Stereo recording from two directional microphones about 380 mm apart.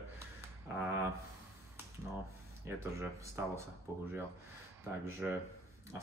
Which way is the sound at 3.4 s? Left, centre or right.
Centre.